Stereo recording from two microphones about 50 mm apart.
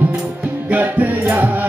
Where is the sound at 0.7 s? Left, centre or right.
Right.